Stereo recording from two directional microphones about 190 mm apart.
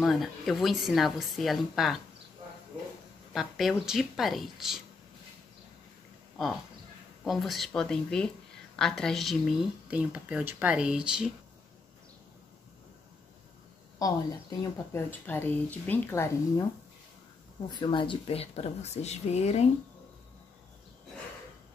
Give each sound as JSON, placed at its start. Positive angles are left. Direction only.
{"t": 0.0, "sound": "speech", "side_deg": 0}
{"t": 3.3, "sound": "speech", "side_deg": 0}
{"t": 7.2, "sound": "speech", "side_deg": 0}
{"t": 14.6, "sound": "speech", "side_deg": 15}
{"t": 17.6, "sound": "speech", "side_deg": 25}